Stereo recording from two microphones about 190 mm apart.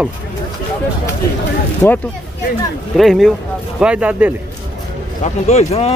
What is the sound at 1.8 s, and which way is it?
Speech, 10° left (ahead or behind).